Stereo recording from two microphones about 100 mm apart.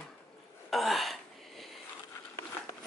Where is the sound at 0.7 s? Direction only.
Centre (ahead or behind).